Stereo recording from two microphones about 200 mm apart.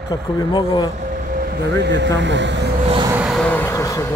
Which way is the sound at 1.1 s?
45° right (ahead or behind).